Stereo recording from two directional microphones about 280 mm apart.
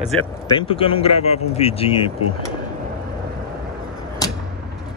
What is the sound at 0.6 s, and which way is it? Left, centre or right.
Speech, centre.